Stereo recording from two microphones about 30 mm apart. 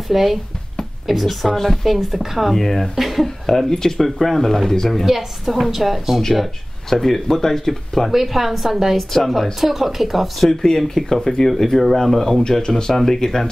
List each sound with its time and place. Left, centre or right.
0.1 s speech: centre
1.2 s speech: centre
3.0 s speech: centre
3.4 s speech: centre
5.0 s speech: centre
6.9 s speech: centre
8.1 s a woman's voice: centre
8.9 s speech: centre
9.3 s speech: centre
11.1 s speech: centre
12.6 s speech: left
12.9 s speech: centre